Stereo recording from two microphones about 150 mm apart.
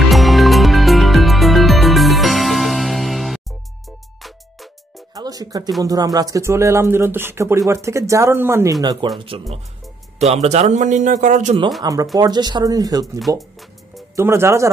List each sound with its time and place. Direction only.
0.1 s music: centre (ahead or behind)
5.1 s music: 25° right (ahead or behind)
5.8 s speech: 25° right (ahead or behind)
9.2 s a man's voice: 35° right (ahead or behind); by 11.5 s 55° right (ahead or behind)
11.8 s speech: 25° right (ahead or behind)
13.4 s music: centre (ahead or behind)
14.1 s speech: 20° right (ahead or behind)